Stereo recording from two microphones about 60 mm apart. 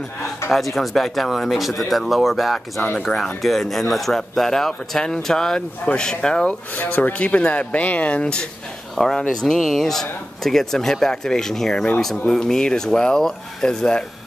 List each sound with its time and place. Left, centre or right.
0.5 s speech: centre
2.8 s speech: left
3.4 s speech: centre
6.7 s speech: left
8.9 s speech: centre